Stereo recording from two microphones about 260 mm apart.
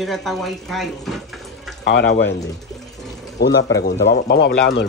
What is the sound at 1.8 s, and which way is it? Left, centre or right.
Speech, left.